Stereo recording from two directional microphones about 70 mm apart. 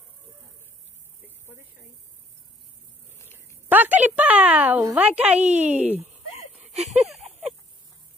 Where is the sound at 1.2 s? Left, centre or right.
Right.